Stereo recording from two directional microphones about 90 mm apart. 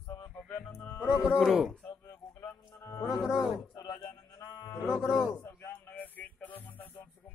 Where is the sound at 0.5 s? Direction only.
10° left (ahead or behind).